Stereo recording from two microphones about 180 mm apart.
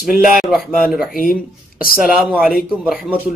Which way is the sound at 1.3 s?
50° left (ahead or behind).